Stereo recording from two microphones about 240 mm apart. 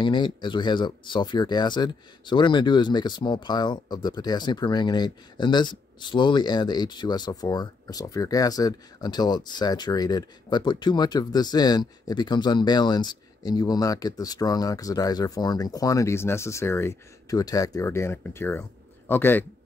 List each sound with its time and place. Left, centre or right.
0.0 s speech: centre